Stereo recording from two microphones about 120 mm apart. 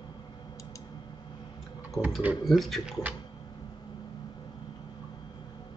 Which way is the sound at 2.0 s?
30° left (ahead or behind).